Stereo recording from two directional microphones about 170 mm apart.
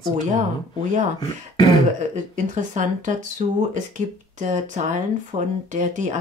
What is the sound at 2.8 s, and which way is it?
Speech, 50° right (ahead or behind).